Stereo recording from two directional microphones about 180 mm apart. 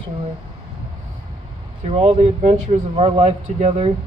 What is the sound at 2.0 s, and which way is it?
Speech, 35° right (ahead or behind).